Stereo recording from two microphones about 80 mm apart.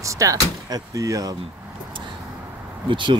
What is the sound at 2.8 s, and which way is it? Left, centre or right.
Speech, right.